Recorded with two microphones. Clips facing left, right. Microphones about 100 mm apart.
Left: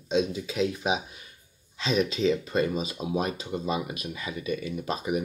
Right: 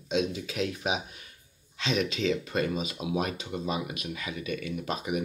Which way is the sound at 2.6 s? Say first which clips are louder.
Left 1 dB; centre (ahead or behind).